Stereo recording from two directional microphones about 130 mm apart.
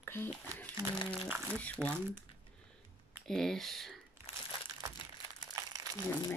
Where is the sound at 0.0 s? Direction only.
15° left (ahead or behind).